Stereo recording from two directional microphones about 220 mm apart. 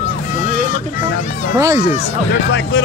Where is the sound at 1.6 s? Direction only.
15° right (ahead or behind).